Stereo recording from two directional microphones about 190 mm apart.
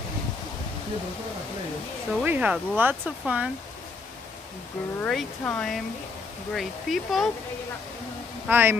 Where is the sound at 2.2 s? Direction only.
10° right (ahead or behind).